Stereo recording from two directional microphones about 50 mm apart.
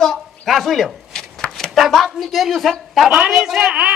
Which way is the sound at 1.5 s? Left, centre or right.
Centre.